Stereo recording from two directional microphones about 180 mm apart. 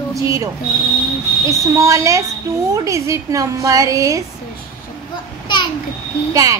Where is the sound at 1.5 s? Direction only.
15° right (ahead or behind).